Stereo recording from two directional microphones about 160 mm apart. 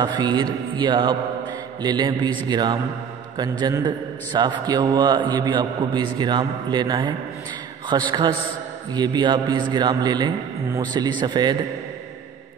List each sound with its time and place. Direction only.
0.0 s a man's voice: 25° right (ahead or behind)